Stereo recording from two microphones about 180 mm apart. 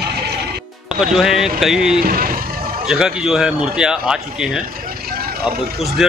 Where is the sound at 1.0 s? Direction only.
Centre (ahead or behind).